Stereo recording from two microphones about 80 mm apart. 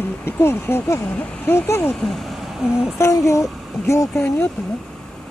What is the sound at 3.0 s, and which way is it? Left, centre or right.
Speech, left.